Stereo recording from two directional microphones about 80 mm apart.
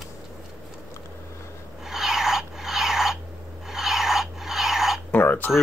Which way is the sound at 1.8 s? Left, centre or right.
Centre.